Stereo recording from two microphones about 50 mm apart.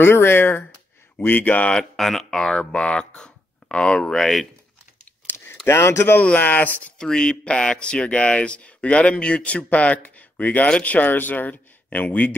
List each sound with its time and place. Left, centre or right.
0.0 s speech: left
1.2 s speech: left
2.0 s speech: centre
4.1 s speech: centre
5.3 s a sound: left
5.7 s speech: left
6.3 s speech: left
7.0 s speech: centre; by 12.4 s left